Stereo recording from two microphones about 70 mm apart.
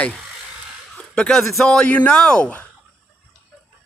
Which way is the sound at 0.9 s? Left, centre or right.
Centre.